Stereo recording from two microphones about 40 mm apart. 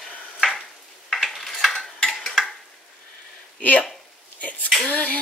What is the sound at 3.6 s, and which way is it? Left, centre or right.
Speech, left.